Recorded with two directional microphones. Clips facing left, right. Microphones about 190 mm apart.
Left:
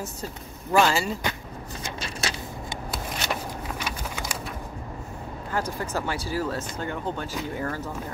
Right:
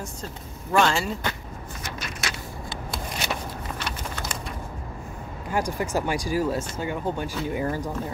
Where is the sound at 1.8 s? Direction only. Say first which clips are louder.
Left 2 dB; 30° left (ahead or behind).